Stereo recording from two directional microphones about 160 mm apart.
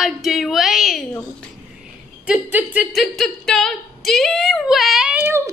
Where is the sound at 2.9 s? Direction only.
Centre (ahead or behind).